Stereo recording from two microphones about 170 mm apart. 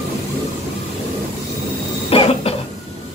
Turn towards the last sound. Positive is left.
turn(degrees=35)  # may be behind; listen again after turning